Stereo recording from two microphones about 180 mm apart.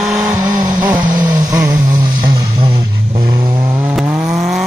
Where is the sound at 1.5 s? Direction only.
20° right (ahead or behind).